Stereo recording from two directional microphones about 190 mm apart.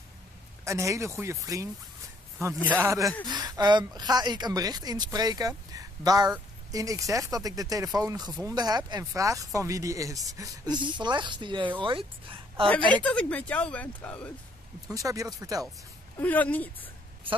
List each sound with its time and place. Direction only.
0.7 s speech: 15° right (ahead or behind)
2.8 s a woman's voice: 15° right (ahead or behind)
12.6 s speech: 5° left (ahead or behind)
14.9 s speech: 15° right (ahead or behind)
16.2 s speech: 10° left (ahead or behind)